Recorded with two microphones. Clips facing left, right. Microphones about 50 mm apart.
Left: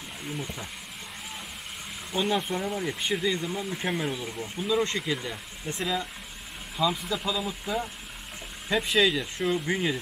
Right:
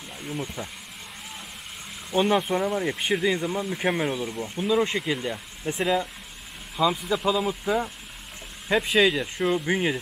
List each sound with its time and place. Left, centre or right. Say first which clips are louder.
2.1 s speech: right 5 dB; centre
7.0 s speech: right 5 dB; centre
7.2 s speech: right 8 dB; right